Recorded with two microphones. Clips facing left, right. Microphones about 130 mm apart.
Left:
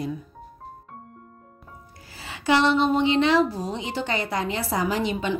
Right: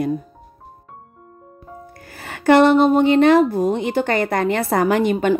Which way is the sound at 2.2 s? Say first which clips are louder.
Right 8 dB; 55° right (ahead or behind).